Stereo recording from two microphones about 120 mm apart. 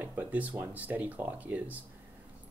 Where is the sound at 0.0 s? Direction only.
15° right (ahead or behind).